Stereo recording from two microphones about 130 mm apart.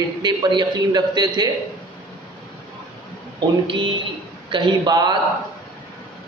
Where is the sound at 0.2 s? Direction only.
35° right (ahead or behind).